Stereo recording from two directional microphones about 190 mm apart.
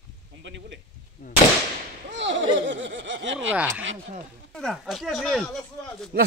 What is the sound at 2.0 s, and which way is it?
Whip, 70° right (ahead or behind).